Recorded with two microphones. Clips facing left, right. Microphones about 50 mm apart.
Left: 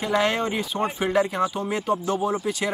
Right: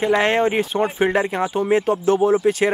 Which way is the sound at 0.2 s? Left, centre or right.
Right.